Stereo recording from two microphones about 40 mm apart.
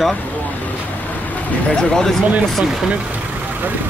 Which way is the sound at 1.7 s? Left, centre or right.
Centre.